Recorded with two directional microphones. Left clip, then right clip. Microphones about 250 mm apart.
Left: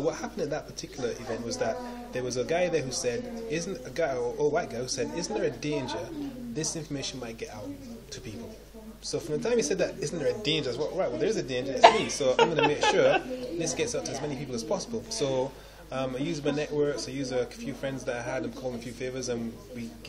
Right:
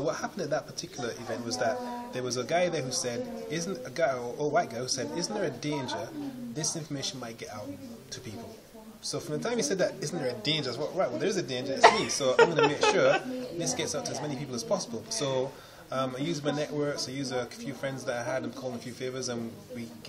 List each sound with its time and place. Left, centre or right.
0.0 s speech: centre
9.1 s speech: centre
12.4 s a woman's voice: right
12.7 s speech: centre